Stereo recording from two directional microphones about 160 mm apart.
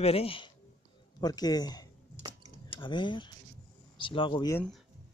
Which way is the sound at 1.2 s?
25° left (ahead or behind).